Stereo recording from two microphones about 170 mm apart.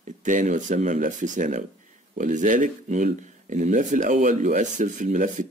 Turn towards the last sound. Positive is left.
turn(degrees=-50)  # may be behind; listen again after turning